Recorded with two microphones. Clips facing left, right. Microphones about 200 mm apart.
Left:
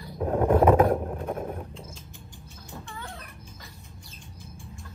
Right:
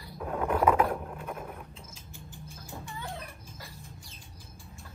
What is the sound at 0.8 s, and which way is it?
Vehicle, 35° left (ahead or behind).